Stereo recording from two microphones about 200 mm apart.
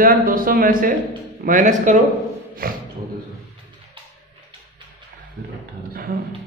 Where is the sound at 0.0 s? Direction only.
45° right (ahead or behind).